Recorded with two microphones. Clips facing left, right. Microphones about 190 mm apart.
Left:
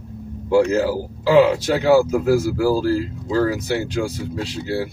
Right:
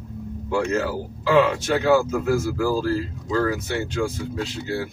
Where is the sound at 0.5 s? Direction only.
30° left (ahead or behind).